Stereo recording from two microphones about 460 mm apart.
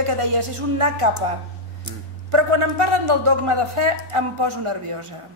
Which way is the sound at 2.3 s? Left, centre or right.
Right.